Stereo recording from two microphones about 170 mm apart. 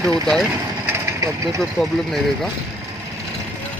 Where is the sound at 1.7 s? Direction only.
Centre (ahead or behind).